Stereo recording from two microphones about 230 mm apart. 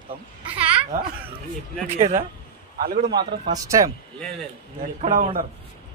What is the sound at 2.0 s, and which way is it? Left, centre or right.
Speech, right.